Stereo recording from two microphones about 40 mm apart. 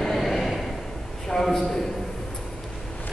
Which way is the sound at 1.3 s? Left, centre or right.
Centre.